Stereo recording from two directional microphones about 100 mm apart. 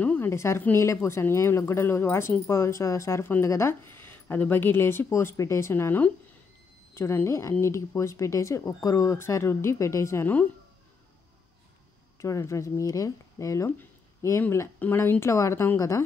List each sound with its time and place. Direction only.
0.0 s a sound: 15° left (ahead or behind)
0.3 s speech: 30° left (ahead or behind)
12.2 s speech: 30° left (ahead or behind)
14.8 s speech: 20° left (ahead or behind)